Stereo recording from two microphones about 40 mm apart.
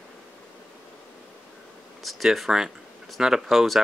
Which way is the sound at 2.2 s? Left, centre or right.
Centre.